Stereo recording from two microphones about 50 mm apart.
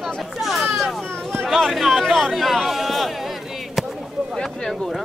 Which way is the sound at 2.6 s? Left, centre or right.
Centre.